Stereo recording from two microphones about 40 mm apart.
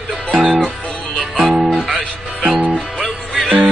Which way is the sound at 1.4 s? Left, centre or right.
Centre.